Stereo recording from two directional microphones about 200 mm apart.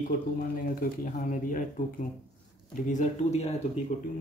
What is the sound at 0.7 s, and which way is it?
Speech, 40° left (ahead or behind).